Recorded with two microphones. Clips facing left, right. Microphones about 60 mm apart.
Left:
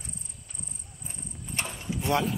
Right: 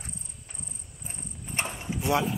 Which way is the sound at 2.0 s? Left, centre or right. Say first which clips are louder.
Right 1 dB; centre.